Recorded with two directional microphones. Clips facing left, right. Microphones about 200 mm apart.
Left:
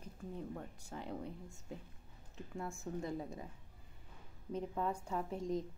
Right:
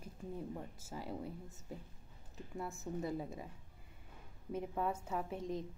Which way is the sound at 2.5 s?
Centre (ahead or behind).